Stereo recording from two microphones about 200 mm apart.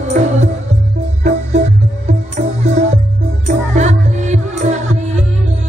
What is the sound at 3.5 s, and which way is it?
Music, 35° right (ahead or behind).